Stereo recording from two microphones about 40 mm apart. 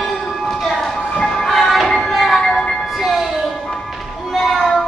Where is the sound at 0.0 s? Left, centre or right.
Centre.